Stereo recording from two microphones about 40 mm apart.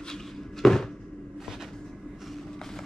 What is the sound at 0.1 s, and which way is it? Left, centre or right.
Cupboard open or close, centre.